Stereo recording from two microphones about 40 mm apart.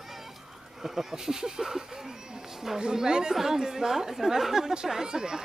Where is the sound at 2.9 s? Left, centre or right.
Centre.